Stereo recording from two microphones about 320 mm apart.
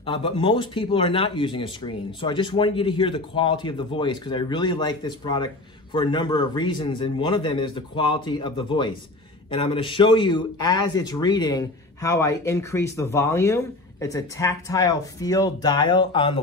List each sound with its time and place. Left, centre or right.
0.0 s speech: centre